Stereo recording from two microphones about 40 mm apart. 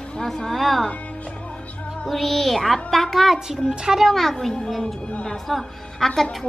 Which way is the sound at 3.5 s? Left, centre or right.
Centre.